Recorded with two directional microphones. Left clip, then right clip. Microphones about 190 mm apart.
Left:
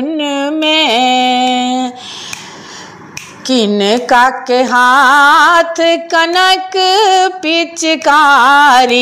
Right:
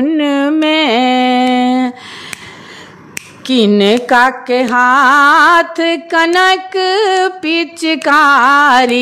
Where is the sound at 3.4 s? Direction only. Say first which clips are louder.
Even; 20° right (ahead or behind).